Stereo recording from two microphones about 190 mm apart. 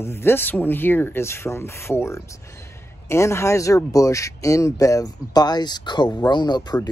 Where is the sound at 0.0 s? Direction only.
10° left (ahead or behind).